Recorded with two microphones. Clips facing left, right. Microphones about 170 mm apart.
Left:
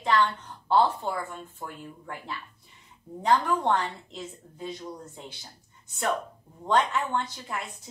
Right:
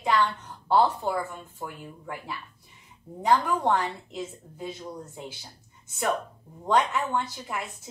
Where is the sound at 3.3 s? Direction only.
15° right (ahead or behind).